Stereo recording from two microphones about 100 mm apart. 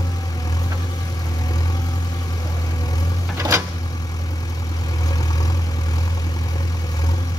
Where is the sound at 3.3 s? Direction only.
30° right (ahead or behind).